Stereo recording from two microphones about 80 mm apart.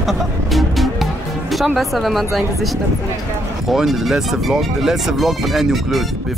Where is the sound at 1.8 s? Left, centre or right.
Centre.